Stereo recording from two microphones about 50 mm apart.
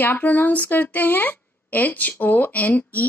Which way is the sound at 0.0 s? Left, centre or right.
Left.